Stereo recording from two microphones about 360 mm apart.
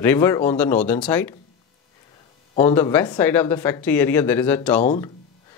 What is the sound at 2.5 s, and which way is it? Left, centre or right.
Speech, centre.